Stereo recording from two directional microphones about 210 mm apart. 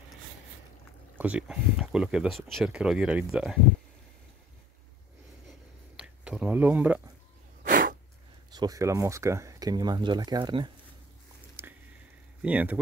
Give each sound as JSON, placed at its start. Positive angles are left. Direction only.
{"t": 1.1, "sound": "speech", "side_deg": -5}
{"t": 5.9, "sound": "speech", "side_deg": -5}
{"t": 7.6, "sound": "a sound", "side_deg": -40}
{"t": 8.5, "sound": "speech", "side_deg": -15}
{"t": 11.6, "sound": "a sound", "side_deg": -10}
{"t": 12.4, "sound": "speech", "side_deg": -5}